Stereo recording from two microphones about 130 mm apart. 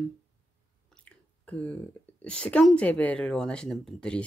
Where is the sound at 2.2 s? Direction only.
10° left (ahead or behind).